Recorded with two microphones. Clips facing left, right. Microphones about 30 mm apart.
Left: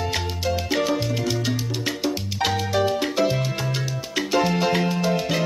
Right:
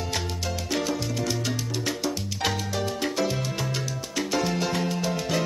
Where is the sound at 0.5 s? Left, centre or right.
Left.